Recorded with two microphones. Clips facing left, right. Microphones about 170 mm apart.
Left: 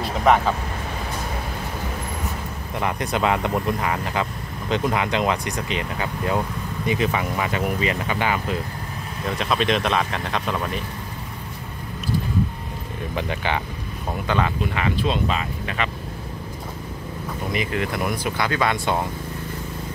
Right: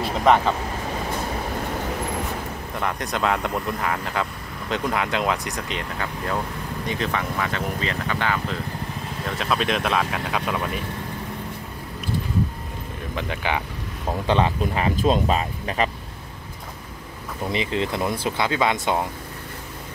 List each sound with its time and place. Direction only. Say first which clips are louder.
0.0 s vehicle: even; centre (ahead or behind)
2.8 s speech: left 2 dB; 5° left (ahead or behind)
9.4 s speech: left 2 dB; centre (ahead or behind)
13.1 s speech: left 1 dB; centre (ahead or behind)
14.2 s speech: right 2 dB; 30° right (ahead or behind)
17.5 s speech: right 1 dB; 25° right (ahead or behind)